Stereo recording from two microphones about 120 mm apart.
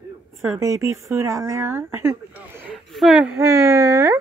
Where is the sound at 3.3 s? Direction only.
25° right (ahead or behind).